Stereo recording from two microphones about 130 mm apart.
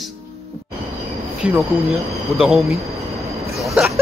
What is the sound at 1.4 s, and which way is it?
A man's voice, centre (ahead or behind).